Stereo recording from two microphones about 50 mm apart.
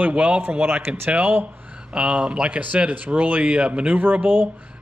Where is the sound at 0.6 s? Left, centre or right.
Right.